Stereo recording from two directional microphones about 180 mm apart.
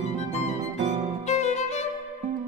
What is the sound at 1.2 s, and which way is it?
Music, 40° left (ahead or behind).